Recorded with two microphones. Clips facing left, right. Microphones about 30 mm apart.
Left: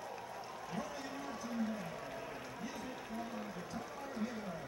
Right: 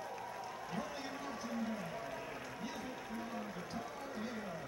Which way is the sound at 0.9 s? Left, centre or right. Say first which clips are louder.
Even; right.